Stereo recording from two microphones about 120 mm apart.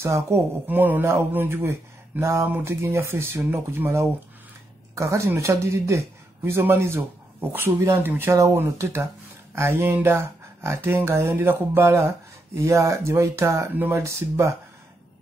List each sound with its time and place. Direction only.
0.0 s speech: 25° right (ahead or behind)